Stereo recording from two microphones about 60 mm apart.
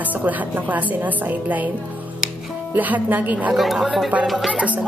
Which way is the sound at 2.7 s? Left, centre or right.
Right.